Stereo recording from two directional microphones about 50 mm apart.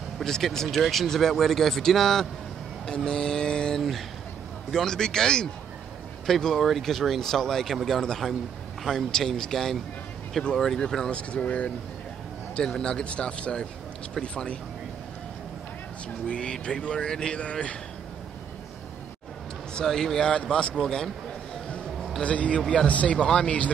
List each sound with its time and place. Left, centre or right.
0.2 s speech: centre
11.1 s speech: left
16.3 s speech: centre
19.7 s speech: centre
20.7 s speech: centre
22.2 s speech: left
22.6 s speech: centre
22.8 s speech: left
23.1 s speech: centre